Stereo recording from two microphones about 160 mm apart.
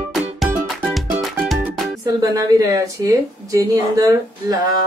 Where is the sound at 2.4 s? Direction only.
20° right (ahead or behind).